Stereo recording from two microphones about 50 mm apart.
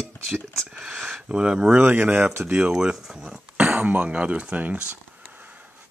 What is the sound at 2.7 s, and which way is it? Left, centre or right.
Speech, centre.